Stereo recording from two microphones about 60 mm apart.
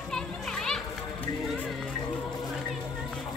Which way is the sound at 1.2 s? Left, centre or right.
Left.